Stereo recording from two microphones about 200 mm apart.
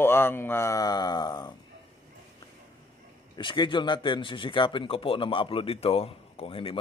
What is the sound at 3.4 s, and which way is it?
Speech, 25° left (ahead or behind).